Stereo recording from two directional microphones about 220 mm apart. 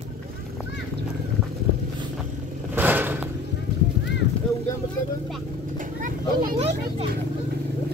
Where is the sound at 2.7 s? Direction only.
10° right (ahead or behind).